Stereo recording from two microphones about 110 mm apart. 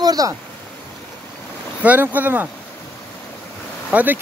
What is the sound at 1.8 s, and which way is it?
Speech, 15° right (ahead or behind).